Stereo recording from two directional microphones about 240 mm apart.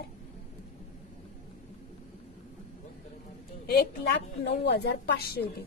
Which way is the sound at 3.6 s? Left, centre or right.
Left.